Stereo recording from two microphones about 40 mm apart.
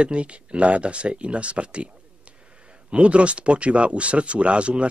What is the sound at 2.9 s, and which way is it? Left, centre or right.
Speech, right.